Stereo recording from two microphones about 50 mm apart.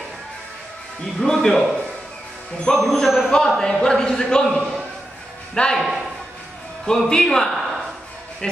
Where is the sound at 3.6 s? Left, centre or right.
Centre.